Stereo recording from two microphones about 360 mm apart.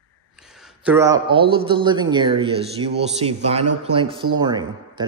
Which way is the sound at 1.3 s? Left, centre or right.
Centre.